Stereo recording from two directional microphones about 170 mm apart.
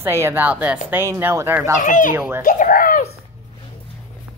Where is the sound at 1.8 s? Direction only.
50° left (ahead or behind).